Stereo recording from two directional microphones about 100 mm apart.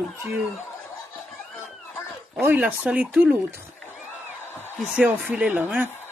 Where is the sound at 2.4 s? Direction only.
20° right (ahead or behind).